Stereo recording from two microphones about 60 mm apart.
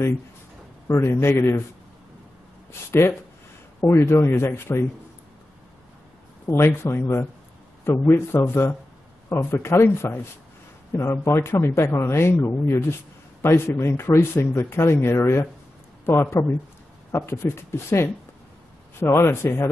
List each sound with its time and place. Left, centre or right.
0.8 s speech: left
2.9 s speech: left
4.3 s speech: left
6.4 s speech: left